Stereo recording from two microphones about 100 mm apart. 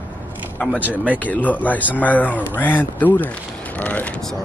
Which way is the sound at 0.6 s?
15° left (ahead or behind).